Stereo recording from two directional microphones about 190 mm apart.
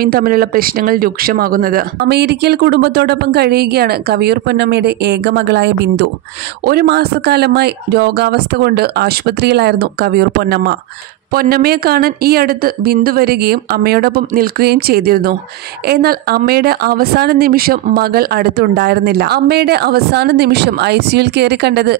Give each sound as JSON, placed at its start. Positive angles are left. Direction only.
{"t": 0.0, "sound": "speech", "side_deg": -50}
{"t": 6.6, "sound": "speech", "side_deg": -55}